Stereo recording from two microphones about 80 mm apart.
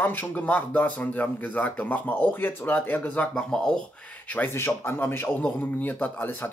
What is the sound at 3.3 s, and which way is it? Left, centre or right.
Speech, centre.